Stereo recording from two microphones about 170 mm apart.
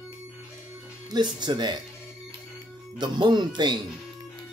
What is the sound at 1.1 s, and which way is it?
Speech, 25° right (ahead or behind).